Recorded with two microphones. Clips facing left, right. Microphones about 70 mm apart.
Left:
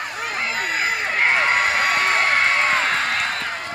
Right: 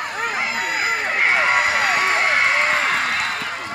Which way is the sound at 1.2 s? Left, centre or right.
Left.